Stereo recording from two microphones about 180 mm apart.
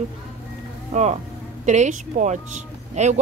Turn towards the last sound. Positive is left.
turn(degrees=-40)  # may be behind; listen again after turning